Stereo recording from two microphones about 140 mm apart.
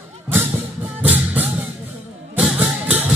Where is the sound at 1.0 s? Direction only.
10° right (ahead or behind).